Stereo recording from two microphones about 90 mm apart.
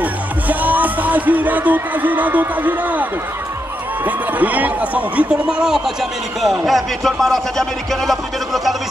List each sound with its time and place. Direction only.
0.0 s speech: 20° right (ahead or behind); by 8.2 s centre (ahead or behind)